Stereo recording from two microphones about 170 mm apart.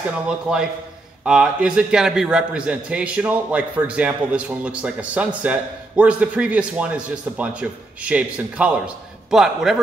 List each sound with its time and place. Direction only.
0.5 s a man's voice: 5° right (ahead or behind)